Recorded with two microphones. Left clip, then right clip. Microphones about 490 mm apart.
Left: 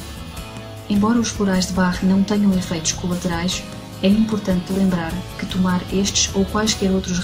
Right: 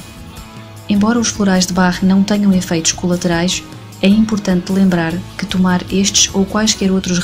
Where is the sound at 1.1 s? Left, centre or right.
Centre.